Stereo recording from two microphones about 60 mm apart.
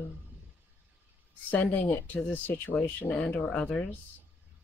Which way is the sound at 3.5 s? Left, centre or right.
Centre.